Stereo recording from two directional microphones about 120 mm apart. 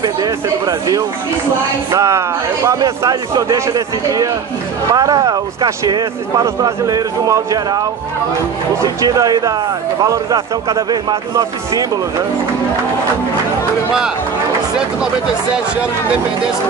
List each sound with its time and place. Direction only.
0.0 s a man's voice: 30° right (ahead or behind)
8.8 s speech: 30° right (ahead or behind)